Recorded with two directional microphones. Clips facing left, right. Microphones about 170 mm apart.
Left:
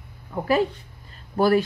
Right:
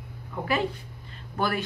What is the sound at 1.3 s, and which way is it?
Speech, 35° left (ahead or behind).